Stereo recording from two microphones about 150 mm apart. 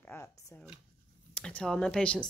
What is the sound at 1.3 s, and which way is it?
Speech, 5° left (ahead or behind).